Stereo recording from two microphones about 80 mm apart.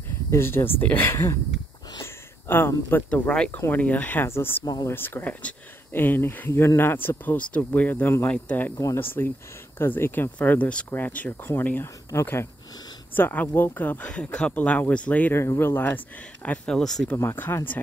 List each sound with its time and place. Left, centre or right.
0.3 s speech: left
1.1 s speech: left
2.0 s a sound: left
2.9 s speech: centre
8.7 s speech: left
9.0 s speech: left
11.8 s speech: left
13.1 s speech: left
15.3 s speech: left
16.6 s speech: centre
17.5 s speech: left